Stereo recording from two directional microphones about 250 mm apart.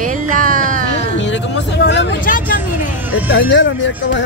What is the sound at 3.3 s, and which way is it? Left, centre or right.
Speech, left.